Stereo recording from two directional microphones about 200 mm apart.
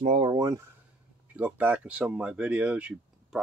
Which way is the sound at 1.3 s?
10° right (ahead or behind).